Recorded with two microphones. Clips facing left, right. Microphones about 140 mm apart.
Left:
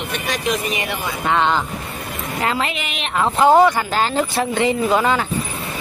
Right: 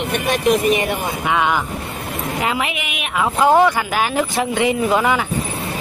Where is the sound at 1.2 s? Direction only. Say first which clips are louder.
Left 2 dB; 10° right (ahead or behind).